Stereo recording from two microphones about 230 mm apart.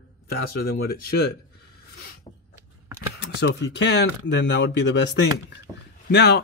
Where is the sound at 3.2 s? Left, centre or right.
Left.